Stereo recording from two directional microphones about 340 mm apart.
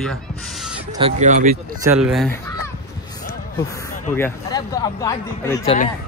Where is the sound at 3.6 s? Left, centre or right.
Centre.